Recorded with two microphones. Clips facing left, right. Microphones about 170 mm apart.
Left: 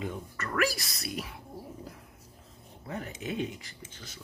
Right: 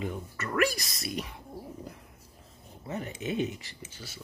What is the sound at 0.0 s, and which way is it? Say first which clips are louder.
Speech: right 1 dB; centre (ahead or behind).